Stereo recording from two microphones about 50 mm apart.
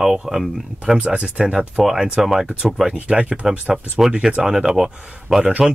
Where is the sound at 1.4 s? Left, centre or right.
Centre.